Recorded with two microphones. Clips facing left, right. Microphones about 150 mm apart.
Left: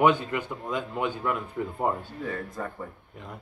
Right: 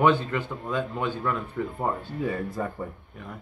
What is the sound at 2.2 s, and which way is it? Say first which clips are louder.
Speech: right 4 dB; 10° right (ahead or behind).